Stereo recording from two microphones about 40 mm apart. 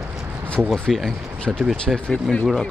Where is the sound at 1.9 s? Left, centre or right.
Left.